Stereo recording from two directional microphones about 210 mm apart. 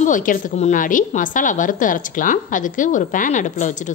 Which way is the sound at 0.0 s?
40° left (ahead or behind).